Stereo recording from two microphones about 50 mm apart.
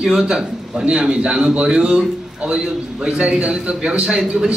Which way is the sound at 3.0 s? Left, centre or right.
Right.